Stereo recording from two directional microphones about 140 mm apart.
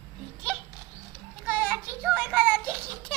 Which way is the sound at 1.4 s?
15° right (ahead or behind).